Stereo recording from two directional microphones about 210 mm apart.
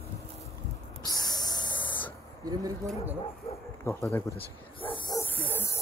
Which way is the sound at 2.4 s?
15° right (ahead or behind).